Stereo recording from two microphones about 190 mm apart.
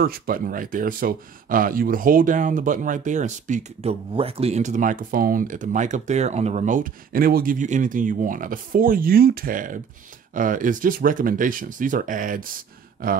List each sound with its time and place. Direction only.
0.0 s speech: 50° right (ahead or behind)